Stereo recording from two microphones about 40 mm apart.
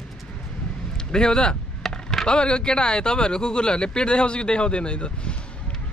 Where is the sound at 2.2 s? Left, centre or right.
Left.